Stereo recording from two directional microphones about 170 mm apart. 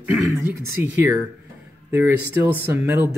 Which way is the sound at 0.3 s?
15° right (ahead or behind).